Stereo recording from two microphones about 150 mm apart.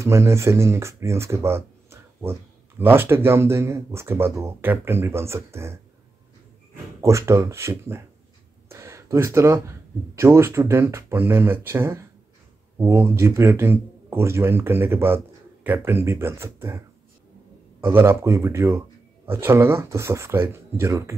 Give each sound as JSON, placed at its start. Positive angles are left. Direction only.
{"t": 0.0, "sound": "speech", "side_deg": -20}
{"t": 7.0, "sound": "speech", "side_deg": -20}
{"t": 8.6, "sound": "a sound", "side_deg": -20}
{"t": 10.1, "sound": "speech", "side_deg": -20}
{"t": 17.8, "sound": "speech", "side_deg": -15}